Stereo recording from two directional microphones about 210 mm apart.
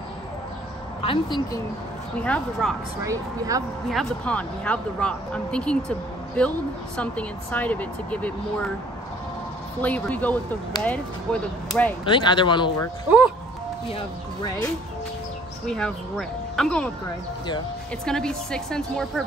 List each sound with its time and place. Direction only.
1.0 s speech: 25° left (ahead or behind)
2.1 s speech: 5° left (ahead or behind)
3.0 s speech: 15° right (ahead or behind)
3.9 s speech: 5° left (ahead or behind)
9.8 s speech: 5° left (ahead or behind)
12.0 s speech: 25° left (ahead or behind)
15.6 s speech: 5° left (ahead or behind)
18.0 s speech: 5° left (ahead or behind)